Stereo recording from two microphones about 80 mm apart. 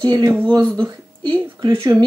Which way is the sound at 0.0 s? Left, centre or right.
Right.